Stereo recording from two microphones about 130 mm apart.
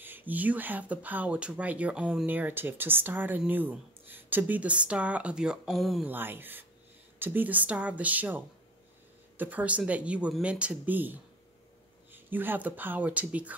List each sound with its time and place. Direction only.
0.0 s speech: 15° right (ahead or behind)
6.0 s speech: 15° right (ahead or behind)